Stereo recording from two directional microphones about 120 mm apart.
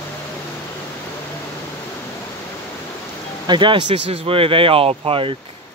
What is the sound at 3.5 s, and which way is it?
Speech, 40° right (ahead or behind).